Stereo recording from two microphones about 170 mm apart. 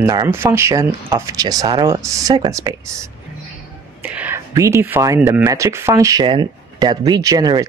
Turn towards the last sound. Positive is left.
turn(degrees=-20)  # may be behind; listen again after turning